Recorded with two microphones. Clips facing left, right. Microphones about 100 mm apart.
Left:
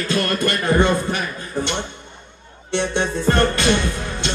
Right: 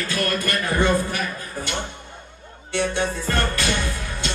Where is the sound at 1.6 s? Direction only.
25° left (ahead or behind).